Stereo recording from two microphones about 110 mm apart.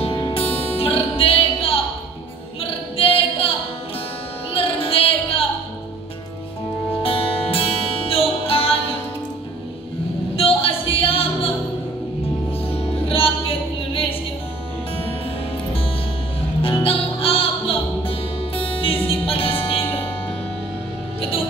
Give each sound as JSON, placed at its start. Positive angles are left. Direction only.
{"t": 0.0, "sound": "music", "side_deg": 50}
{"t": 2.6, "sound": "a capella", "side_deg": 60}
{"t": 4.8, "sound": "music", "side_deg": 60}
{"t": 7.0, "sound": "music", "side_deg": 55}
{"t": 10.3, "sound": "music", "side_deg": 60}
{"t": 13.1, "sound": "a sound", "side_deg": 55}
{"t": 16.6, "sound": "music", "side_deg": 55}